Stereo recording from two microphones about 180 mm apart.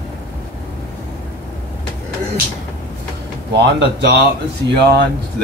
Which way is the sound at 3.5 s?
65° right (ahead or behind).